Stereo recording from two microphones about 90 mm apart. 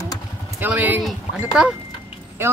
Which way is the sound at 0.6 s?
20° right (ahead or behind).